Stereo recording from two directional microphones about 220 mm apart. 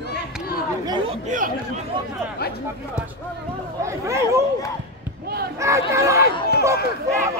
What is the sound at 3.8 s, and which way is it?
Speech, 15° right (ahead or behind).